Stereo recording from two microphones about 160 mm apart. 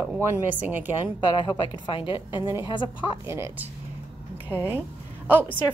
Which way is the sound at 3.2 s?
15° right (ahead or behind).